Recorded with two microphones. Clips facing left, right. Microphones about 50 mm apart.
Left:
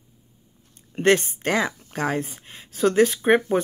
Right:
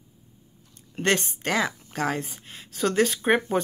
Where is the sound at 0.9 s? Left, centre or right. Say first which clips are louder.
Left 5 dB; centre.